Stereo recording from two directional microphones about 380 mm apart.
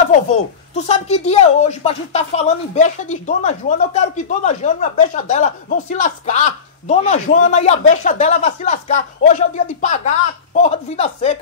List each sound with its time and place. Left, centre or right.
0.3 s speech: centre